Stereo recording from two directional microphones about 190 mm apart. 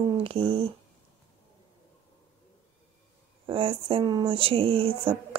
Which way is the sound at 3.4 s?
30° right (ahead or behind).